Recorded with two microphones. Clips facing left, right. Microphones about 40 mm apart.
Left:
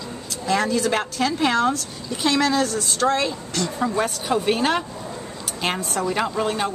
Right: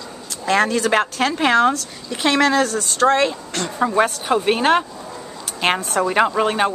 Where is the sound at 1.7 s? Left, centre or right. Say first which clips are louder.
Right 1 dB; right.